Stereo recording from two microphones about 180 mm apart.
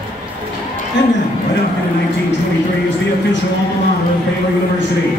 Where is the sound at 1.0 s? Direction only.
80° left.